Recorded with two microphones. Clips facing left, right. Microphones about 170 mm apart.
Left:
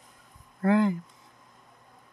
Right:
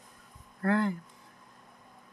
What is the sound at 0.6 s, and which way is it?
Speech, 20° left (ahead or behind).